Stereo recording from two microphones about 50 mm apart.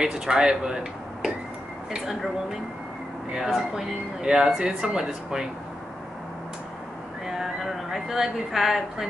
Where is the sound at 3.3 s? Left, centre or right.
Centre.